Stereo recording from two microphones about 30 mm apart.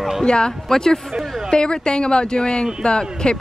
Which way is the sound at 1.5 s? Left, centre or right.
Left.